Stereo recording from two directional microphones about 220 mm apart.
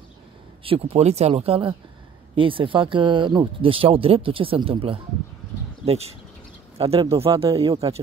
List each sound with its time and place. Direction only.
0.7 s speech: 25° right (ahead or behind)